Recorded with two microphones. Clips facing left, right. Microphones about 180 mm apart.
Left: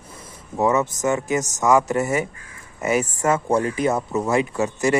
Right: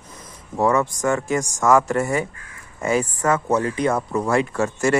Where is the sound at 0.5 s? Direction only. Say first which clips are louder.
Even; 20° left (ahead or behind).